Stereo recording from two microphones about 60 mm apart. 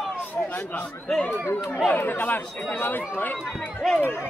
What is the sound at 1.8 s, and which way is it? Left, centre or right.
Speech, left.